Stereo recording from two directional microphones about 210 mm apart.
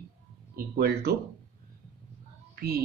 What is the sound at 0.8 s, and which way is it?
Speech, 45° right (ahead or behind).